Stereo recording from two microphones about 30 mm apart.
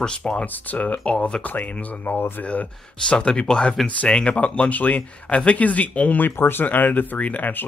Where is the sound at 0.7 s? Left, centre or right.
Left.